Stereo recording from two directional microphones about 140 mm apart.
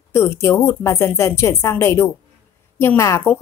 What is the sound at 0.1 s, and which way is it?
Speech, 20° left (ahead or behind).